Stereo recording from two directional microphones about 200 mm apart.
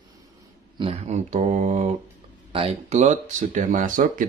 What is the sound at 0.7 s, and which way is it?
Speech, 25° right (ahead or behind).